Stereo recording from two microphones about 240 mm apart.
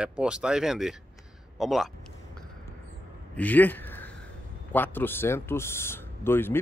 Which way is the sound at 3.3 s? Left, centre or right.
Centre.